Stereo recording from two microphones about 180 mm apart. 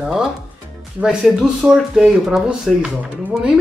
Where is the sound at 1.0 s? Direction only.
Centre (ahead or behind).